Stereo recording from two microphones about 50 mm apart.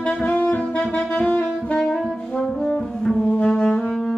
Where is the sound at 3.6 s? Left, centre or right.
Centre.